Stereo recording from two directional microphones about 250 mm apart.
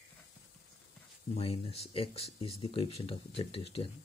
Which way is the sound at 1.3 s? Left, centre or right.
Left.